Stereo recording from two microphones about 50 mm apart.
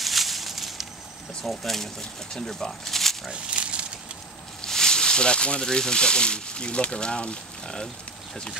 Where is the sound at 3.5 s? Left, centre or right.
Right.